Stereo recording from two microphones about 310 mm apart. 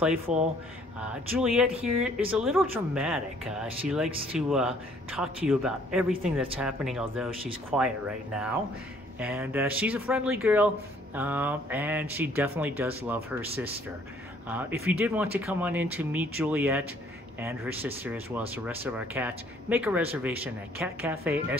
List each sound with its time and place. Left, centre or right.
0.3 s speech: right
1.0 s speech: centre
14.5 s speech: centre